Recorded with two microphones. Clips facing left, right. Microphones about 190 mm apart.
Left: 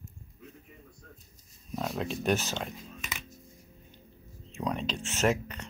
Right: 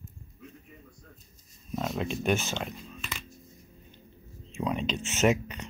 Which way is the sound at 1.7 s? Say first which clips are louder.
Right 2 dB; centre (ahead or behind).